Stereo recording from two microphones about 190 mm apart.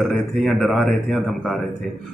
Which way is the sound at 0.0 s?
Centre (ahead or behind).